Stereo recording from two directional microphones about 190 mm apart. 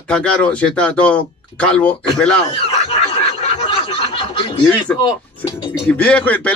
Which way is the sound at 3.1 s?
30° left (ahead or behind).